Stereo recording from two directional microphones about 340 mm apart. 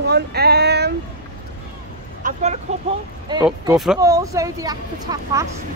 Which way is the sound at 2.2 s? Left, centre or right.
Centre.